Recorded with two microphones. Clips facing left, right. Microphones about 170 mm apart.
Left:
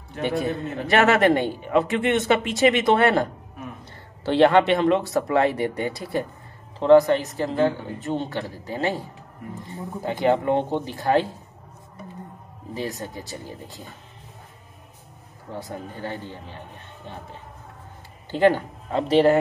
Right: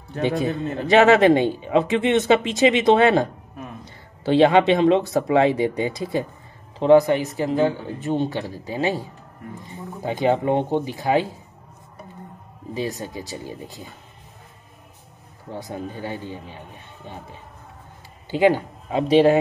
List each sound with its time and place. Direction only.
0.3 s a man's voice: 20° right (ahead or behind)
10.0 s speech: 15° right (ahead or behind)
12.7 s speech: 15° right (ahead or behind)
15.7 s speech: 15° right (ahead or behind)
18.3 s speech: 10° right (ahead or behind)